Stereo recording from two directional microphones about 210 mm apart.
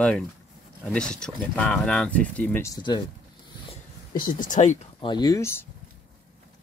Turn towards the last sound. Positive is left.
turn(degrees=10)  # may be behind; listen again after turning